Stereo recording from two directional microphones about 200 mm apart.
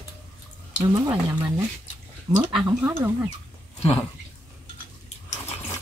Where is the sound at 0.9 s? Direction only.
15° right (ahead or behind).